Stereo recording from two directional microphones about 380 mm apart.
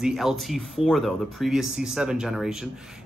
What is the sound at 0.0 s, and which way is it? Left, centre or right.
Speech, centre.